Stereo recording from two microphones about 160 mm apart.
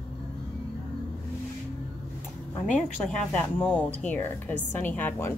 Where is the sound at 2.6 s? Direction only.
5° left (ahead or behind).